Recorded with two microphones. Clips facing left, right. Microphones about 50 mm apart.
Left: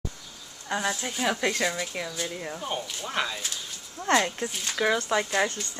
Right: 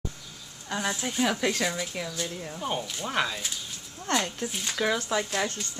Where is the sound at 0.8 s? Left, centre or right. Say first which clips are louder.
Right 2 dB; centre.